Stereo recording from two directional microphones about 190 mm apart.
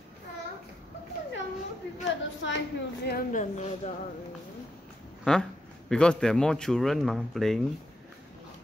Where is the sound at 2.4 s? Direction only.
75° left (ahead or behind).